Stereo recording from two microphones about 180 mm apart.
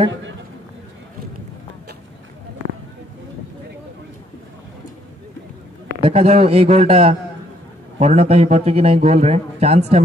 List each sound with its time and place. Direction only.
5.9 s a man's voice: 35° right (ahead or behind)